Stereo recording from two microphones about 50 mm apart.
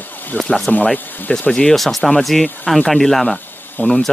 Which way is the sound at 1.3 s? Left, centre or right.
Left.